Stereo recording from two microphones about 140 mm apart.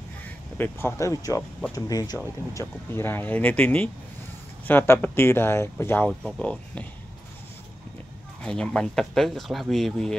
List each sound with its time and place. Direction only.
0.2 s speech: 15° left (ahead or behind)
8.5 s speech: 5° left (ahead or behind)